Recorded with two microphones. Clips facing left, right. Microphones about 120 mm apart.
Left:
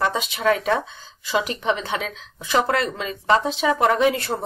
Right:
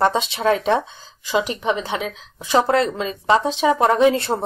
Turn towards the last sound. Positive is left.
turn(degrees=-25)  # may be behind; listen again after turning